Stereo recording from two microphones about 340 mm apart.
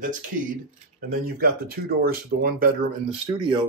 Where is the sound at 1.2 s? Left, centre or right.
Right.